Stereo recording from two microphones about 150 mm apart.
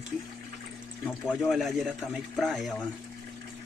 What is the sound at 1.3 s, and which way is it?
Speech, centre (ahead or behind).